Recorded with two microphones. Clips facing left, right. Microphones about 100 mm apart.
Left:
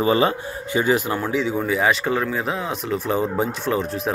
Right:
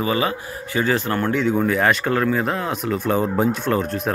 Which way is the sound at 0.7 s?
15° left (ahead or behind).